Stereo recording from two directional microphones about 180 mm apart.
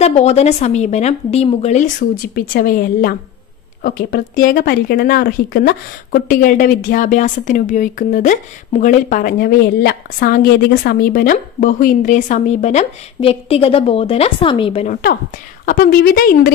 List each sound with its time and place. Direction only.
0.0 s a woman's voice: 35° left (ahead or behind)
15.6 s speech: 50° left (ahead or behind)